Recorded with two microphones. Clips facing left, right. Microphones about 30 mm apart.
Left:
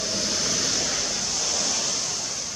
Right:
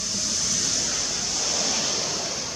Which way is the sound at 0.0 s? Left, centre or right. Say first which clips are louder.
Left 2 dB; centre.